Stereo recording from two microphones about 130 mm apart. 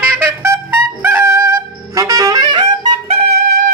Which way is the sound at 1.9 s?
25° right (ahead or behind).